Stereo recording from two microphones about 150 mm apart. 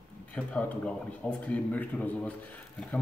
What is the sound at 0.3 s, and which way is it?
Speech, 10° left (ahead or behind).